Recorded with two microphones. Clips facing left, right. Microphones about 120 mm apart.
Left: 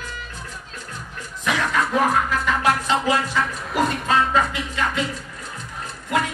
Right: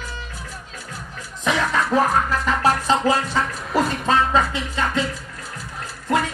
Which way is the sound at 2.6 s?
35° right (ahead or behind).